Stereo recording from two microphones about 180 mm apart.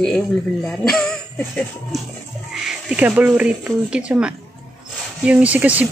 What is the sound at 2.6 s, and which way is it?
Speech, 5° right (ahead or behind).